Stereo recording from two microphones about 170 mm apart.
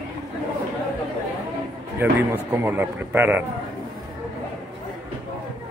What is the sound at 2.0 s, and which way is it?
A man's voice, 15° right (ahead or behind).